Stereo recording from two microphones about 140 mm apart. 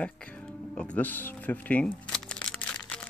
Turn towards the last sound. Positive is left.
turn(degrees=5)  # may be behind; listen again after turning